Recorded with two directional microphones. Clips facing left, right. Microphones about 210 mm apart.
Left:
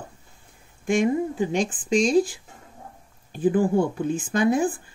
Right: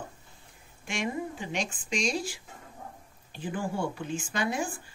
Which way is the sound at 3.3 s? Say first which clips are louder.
Left 13 dB; 50° left (ahead or behind).